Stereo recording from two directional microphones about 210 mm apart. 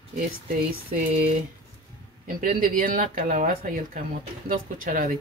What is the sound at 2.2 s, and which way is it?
Speech, 40° right (ahead or behind).